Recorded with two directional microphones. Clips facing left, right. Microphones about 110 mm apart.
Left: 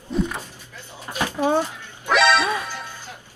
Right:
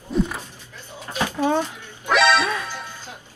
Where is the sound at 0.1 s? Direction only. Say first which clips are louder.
Right 1 dB; centre (ahead or behind).